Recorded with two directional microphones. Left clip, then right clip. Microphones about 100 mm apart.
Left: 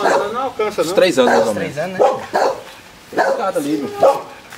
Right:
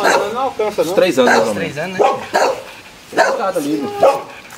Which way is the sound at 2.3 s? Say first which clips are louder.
Right 3 dB; 15° right (ahead or behind).